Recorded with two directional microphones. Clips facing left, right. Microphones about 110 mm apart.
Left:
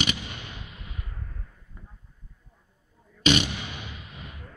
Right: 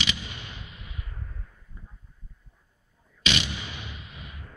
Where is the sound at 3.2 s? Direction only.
45° left (ahead or behind).